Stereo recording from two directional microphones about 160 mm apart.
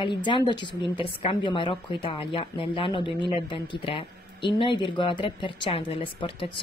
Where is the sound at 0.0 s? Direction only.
30° left (ahead or behind).